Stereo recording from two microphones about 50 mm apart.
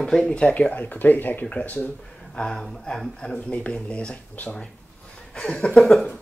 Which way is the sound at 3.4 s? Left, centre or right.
Left.